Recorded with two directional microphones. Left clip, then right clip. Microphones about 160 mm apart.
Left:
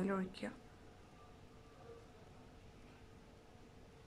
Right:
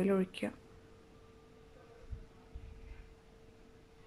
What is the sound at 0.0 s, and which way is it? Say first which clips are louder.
Speech: right 8 dB; 15° right (ahead or behind).